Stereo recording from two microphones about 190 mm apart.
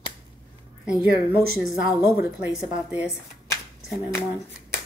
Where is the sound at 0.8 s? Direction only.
5° right (ahead or behind).